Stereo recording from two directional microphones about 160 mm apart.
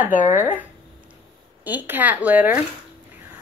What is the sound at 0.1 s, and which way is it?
Speech, 55° left (ahead or behind).